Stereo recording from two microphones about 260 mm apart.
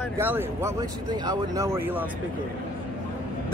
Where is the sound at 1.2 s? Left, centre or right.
Centre.